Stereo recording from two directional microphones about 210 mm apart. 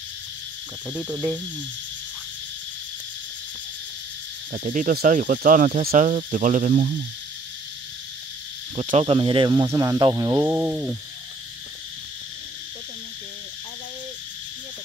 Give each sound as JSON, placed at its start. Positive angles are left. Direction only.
{"t": 1.0, "sound": "cricket", "side_deg": -20}
{"t": 4.5, "sound": "cricket", "side_deg": -40}
{"t": 8.7, "sound": "cricket", "side_deg": -30}